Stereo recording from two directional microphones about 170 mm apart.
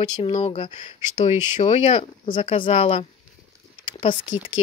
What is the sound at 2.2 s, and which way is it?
Speech, 30° left (ahead or behind).